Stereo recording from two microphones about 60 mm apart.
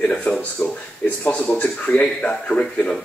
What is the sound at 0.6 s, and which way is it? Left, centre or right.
Speech, left.